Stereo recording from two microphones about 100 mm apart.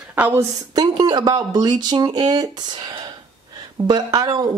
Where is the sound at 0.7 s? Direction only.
45° right (ahead or behind).